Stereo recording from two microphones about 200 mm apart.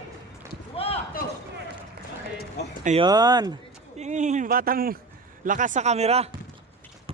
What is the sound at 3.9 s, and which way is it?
Speech, 35° right (ahead or behind).